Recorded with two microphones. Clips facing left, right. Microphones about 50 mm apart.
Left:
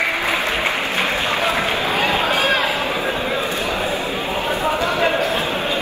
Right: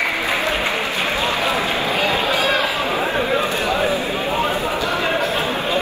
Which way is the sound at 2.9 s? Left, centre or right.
Right.